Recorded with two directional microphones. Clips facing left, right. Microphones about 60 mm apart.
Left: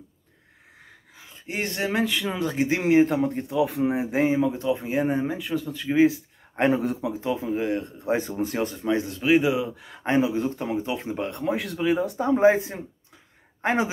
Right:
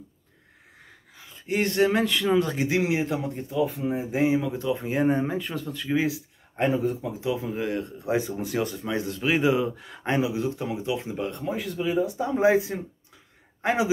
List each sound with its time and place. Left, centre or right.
1.1 s a sound: left
1.9 s speech: centre
2.8 s speech: left
3.4 s speech: left
4.4 s speech: left
4.7 s speech: centre
5.7 s speech: left
6.1 s a sound: left
6.7 s speech: left
7.5 s speech: left
9.2 s speech: centre
9.8 s speech: left
12.3 s speech: left